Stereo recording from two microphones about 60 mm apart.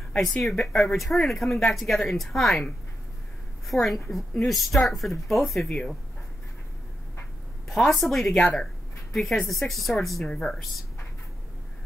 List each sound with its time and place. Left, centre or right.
0.1 s speech: centre
3.6 s speech: centre
7.6 s a sound: centre
8.0 s speech: centre
8.3 s speech: centre
9.1 s a woman's voice: centre
10.2 s speech: centre